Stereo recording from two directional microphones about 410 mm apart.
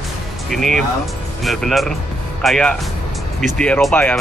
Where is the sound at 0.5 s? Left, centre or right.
Centre.